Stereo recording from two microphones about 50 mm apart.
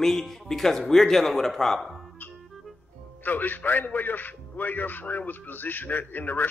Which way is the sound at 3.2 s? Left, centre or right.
Left.